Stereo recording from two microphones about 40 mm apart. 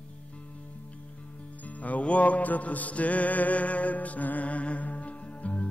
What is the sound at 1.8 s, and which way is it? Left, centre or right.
Music, left.